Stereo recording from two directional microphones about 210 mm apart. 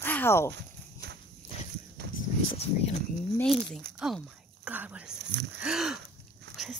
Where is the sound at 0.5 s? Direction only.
50° right (ahead or behind).